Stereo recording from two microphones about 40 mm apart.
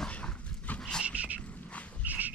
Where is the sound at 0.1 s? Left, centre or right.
Left.